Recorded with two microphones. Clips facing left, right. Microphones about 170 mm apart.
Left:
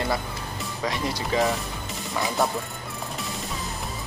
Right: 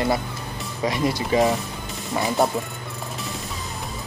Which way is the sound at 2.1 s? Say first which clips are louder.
Right 4 dB; 20° right (ahead or behind).